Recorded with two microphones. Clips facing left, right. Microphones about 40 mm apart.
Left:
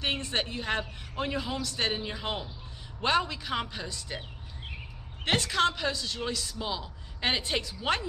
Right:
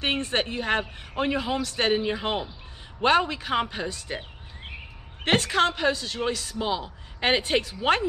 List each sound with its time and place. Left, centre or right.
0.0 s a man's voice: right
1.8 s a man's voice: right
5.2 s a woman's voice: right